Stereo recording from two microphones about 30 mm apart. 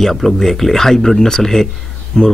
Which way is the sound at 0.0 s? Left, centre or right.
Centre.